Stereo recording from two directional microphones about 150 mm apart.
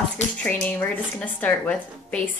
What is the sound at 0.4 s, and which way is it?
A woman's voice, 10° left (ahead or behind).